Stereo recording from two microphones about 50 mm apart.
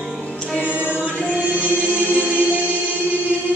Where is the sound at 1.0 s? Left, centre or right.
Left.